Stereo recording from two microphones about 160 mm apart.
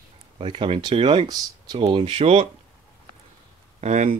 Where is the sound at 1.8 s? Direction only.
35° right (ahead or behind).